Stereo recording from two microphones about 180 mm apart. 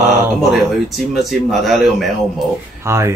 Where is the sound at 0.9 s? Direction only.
Centre (ahead or behind).